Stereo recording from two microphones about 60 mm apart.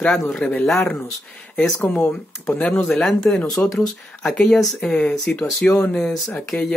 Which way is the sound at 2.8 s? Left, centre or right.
Centre.